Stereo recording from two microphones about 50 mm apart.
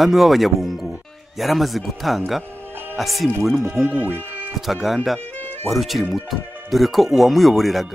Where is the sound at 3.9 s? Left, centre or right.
Right.